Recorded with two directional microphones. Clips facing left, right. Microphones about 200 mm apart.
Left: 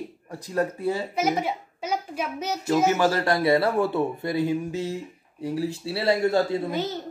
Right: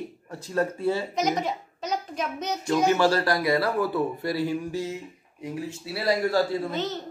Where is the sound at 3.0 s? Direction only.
20° left (ahead or behind).